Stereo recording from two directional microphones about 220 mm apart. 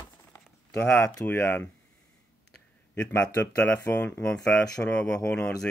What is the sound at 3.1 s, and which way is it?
Speech, 10° left (ahead or behind).